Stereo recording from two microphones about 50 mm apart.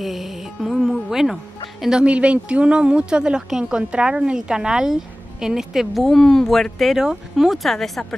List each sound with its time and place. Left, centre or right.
0.0 s music: centre
1.1 s speech: centre
1.9 s speech: right
5.9 s speech: centre
7.0 s speech: centre